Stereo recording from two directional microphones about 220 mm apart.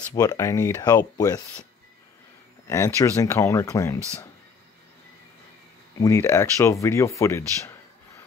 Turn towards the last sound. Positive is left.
turn(degrees=10)  # may be behind; listen again after turning